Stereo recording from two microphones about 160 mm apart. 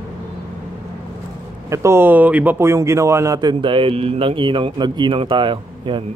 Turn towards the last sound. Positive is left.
turn(degrees=-30)  # may be behind; listen again after turning